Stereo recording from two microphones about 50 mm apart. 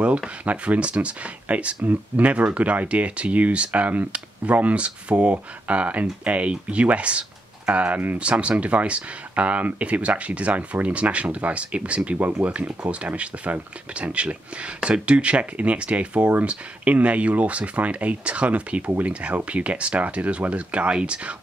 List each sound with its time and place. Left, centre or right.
0.5 s speech: right
8.2 s speech: right